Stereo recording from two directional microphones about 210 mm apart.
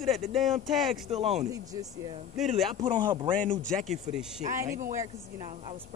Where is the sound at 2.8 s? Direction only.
20° right (ahead or behind).